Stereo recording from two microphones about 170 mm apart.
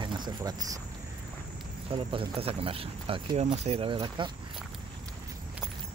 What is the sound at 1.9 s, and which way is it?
Speech, 35° right (ahead or behind).